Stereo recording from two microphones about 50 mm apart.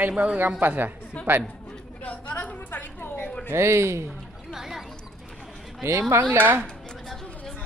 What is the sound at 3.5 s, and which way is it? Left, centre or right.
Speech, right.